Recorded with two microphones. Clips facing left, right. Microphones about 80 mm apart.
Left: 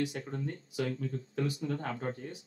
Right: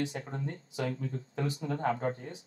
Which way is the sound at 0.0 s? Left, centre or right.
Right.